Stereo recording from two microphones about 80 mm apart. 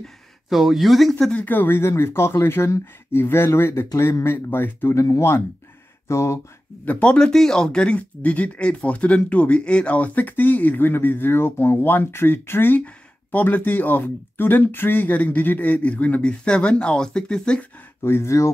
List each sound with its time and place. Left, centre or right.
0.0 s speech: centre
1.3 s speech: left
5.0 s speech: left
6.8 s speech: centre
18.0 s speech: left